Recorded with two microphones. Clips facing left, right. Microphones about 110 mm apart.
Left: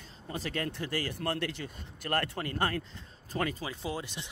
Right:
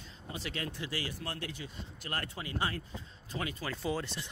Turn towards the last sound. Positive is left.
turn(degrees=15)  # may be behind; listen again after turning